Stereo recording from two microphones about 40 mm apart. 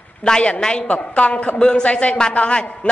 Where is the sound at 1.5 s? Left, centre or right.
Left.